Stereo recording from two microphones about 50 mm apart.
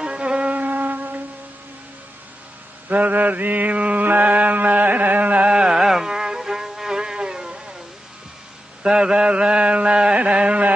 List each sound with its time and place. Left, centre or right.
0.0 s music: right
2.9 s mantra: right; by 7.6 s centre
8.8 s a sound: centre